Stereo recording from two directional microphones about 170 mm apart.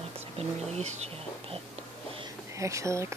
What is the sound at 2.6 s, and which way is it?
Speech, 20° right (ahead or behind).